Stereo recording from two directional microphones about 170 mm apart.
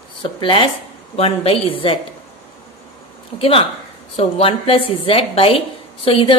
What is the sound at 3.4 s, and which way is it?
A woman's voice, 35° left (ahead or behind).